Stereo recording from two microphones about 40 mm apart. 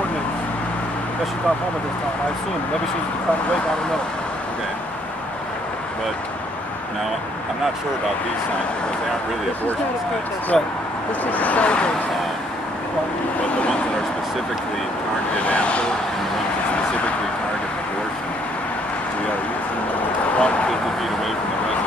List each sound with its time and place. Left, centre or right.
10.5 s speech: centre
11.2 s speech: left
15.4 s speech: left
20.3 s a sound: left